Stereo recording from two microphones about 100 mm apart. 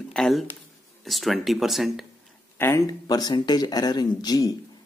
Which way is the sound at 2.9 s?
40° left (ahead or behind).